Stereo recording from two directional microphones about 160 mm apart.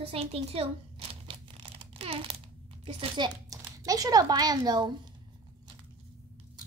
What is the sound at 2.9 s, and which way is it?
Speech, 30° right (ahead or behind).